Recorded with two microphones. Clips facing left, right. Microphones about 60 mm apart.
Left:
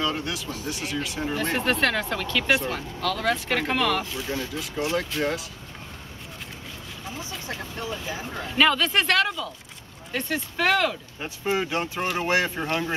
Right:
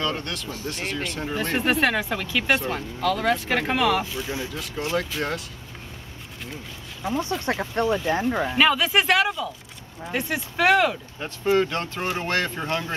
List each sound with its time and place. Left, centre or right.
0.0 s speech: centre
1.6 s speech: centre
7.1 s speech: right
8.5 s speech: centre
11.1 s speech: centre